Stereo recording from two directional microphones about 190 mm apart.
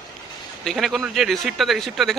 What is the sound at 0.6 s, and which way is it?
Speech, centre (ahead or behind).